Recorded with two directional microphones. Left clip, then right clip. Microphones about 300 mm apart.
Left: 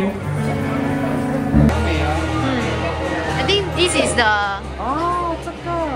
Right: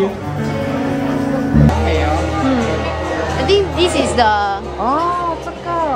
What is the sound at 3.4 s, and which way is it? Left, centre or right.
Speech, centre.